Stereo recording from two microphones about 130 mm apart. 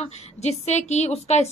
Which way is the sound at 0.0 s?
60° left (ahead or behind).